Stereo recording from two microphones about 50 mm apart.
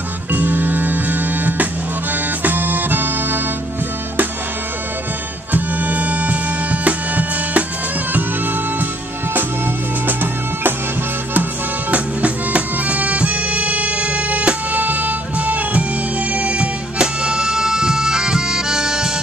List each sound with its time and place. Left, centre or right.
0.3 s music: right
5.5 s music: right
11.9 s music: right; by 19.0 s centre